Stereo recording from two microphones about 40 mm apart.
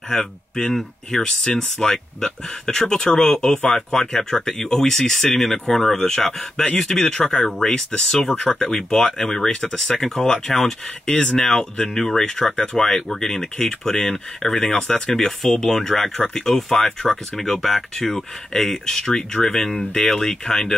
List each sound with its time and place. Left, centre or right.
0.1 s speech: centre
3.7 s speech: centre